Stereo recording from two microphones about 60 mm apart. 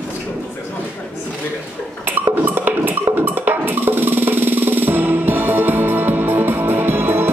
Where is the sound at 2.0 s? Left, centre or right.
Right.